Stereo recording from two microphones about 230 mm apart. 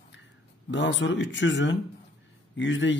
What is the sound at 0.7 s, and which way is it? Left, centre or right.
Speech, left.